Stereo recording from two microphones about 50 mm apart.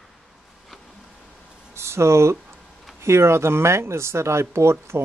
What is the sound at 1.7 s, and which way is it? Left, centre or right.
Speech, right.